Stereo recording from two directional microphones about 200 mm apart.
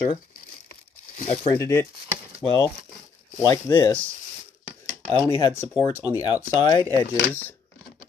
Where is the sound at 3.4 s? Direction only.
20° left (ahead or behind).